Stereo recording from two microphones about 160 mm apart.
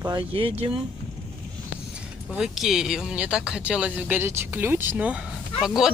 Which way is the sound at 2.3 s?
5° right (ahead or behind).